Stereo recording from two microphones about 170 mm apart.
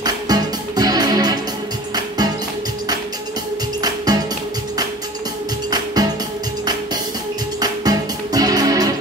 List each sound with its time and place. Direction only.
0.0 s music: 25° right (ahead or behind)
3.8 s music: 25° right (ahead or behind)
7.6 s music: 25° right (ahead or behind)